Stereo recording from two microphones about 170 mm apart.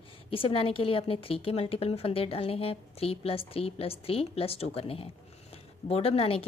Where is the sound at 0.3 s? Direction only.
30° left (ahead or behind).